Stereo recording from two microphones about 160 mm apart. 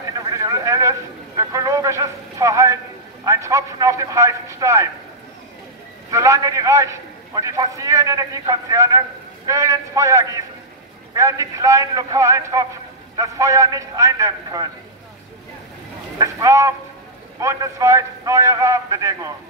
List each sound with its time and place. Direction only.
0.3 s a sound: 20° right (ahead or behind)
3.3 s a man's voice: 20° right (ahead or behind)
6.0 s a man's voice: 20° right (ahead or behind)
16.2 s a man's voice: 20° right (ahead or behind)